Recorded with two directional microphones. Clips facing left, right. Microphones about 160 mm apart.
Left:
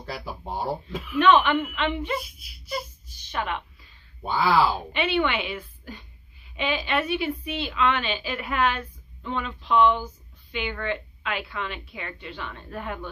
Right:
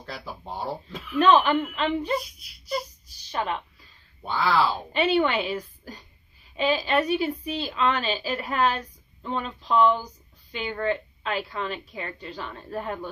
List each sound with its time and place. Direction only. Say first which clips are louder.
0.0 s speech: left 3 dB; 5° left (ahead or behind)
1.1 s speech: even; 35° right (ahead or behind)
2.6 s a sound: right 2 dB; 35° right (ahead or behind)
4.3 s speech: left 2 dB; 5° left (ahead or behind)
4.9 s speech: right 7 dB; 35° right (ahead or behind)